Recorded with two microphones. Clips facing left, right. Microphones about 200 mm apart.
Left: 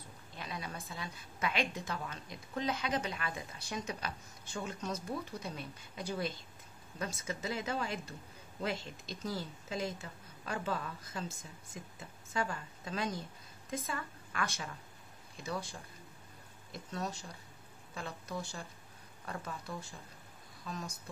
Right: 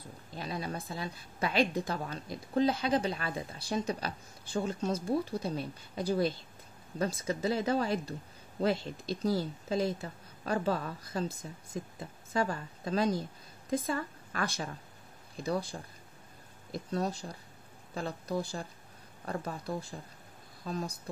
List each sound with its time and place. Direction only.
0.4 s a woman's voice: 35° right (ahead or behind)